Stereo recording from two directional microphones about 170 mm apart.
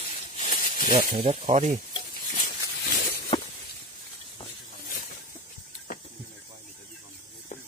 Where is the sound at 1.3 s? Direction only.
40° right (ahead or behind).